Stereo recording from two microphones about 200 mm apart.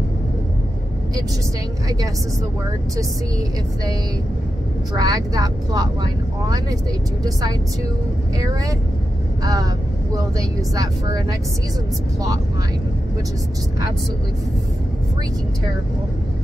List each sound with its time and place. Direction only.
3.0 s speech: 15° right (ahead or behind)
4.9 s speech: 20° right (ahead or behind)
9.4 s speech: 20° right (ahead or behind)
10.7 s speech: 15° right (ahead or behind)